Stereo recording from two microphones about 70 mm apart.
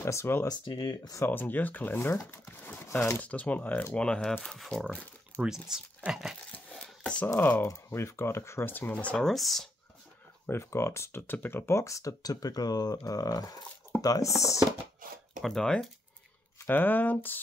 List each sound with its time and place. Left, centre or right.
0.0 s speech: left
0.5 s speech: left
1.3 s speech: left
2.3 s a sound: left
3.1 s speech: centre
4.0 s speech: centre
5.4 s speech: centre
6.5 s a sound: centre
7.3 s speech: left
7.6 s speech: left
9.1 s speech: centre
10.4 s speech: left
15.4 s speech: centre
16.6 s speech: left